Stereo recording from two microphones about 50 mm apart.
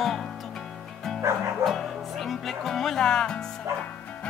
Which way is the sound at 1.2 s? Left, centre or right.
Right.